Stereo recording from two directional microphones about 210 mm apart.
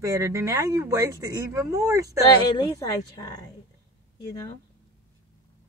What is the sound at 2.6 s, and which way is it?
A woman's voice, 20° left (ahead or behind).